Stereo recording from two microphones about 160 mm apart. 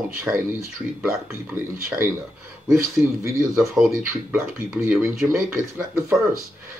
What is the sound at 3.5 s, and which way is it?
Speech, 5° right (ahead or behind).